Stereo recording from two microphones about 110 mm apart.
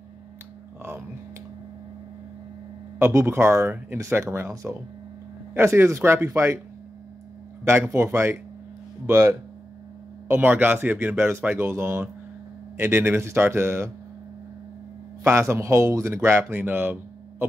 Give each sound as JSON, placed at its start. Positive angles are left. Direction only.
{"t": 3.0, "sound": "a man's voice", "side_deg": -25}
{"t": 7.6, "sound": "a man's voice", "side_deg": -20}
{"t": 15.2, "sound": "a man's voice", "side_deg": -25}